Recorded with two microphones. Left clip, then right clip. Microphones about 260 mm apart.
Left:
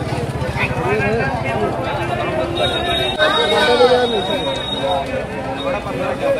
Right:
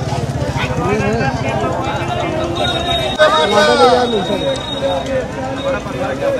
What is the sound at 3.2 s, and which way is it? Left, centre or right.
Speech, right.